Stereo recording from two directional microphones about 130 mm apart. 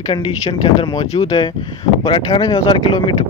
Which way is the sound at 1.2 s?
45° left (ahead or behind).